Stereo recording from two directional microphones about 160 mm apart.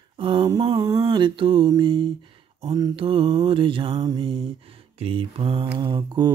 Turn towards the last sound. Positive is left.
turn(degrees=-25)  # may be behind; listen again after turning